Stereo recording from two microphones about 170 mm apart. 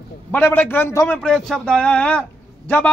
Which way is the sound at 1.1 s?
5° left (ahead or behind).